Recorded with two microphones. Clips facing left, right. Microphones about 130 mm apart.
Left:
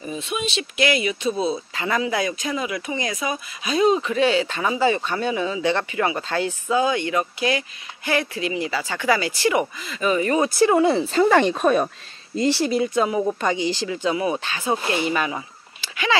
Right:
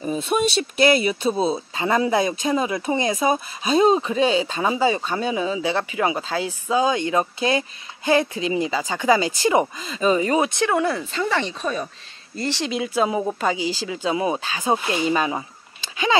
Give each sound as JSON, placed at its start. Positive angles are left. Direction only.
{"t": 0.0, "sound": "speech", "side_deg": -40}
{"t": 4.1, "sound": "speech", "side_deg": -20}
{"t": 10.5, "sound": "speech", "side_deg": 5}
{"t": 10.8, "sound": "speech", "side_deg": 25}
{"t": 11.1, "sound": "speech", "side_deg": 45}
{"t": 12.4, "sound": "speech", "side_deg": 10}
{"t": 12.7, "sound": "speech", "side_deg": -5}
{"t": 14.1, "sound": "speech", "side_deg": -25}